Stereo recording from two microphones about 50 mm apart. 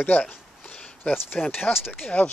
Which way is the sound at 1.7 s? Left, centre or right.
Left.